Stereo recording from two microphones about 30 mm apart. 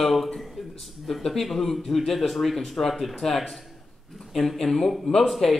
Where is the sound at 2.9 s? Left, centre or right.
Centre.